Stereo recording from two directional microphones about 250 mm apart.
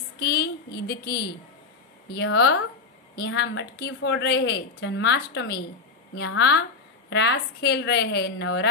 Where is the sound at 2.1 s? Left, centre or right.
Left.